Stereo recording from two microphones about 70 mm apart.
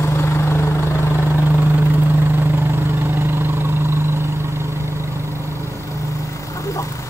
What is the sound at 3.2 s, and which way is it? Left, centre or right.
Vehicle, right.